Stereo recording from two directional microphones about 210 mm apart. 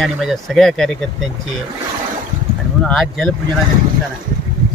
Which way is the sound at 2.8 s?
Centre (ahead or behind).